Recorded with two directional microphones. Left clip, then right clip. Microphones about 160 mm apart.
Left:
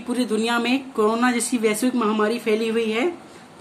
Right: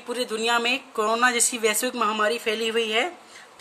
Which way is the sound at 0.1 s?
40° right (ahead or behind).